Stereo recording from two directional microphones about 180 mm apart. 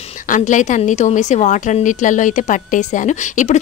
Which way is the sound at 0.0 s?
35° left (ahead or behind).